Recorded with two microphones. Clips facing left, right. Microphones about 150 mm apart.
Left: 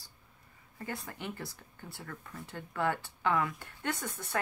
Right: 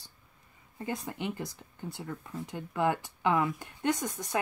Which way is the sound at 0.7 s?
20° right (ahead or behind).